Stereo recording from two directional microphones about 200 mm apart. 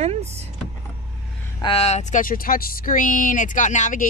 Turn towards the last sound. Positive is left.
turn(degrees=40)  # may be behind; listen again after turning